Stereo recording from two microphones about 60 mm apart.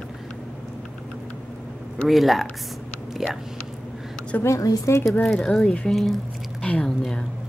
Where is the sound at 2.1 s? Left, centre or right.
Centre.